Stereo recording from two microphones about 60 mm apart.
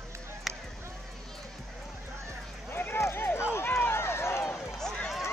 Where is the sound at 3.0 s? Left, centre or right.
Left.